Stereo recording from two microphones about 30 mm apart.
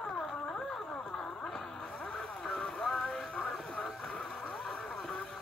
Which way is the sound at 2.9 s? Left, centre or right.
Left.